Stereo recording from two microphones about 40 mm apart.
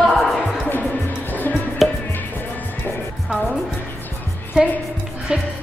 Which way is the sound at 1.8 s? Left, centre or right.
Centre.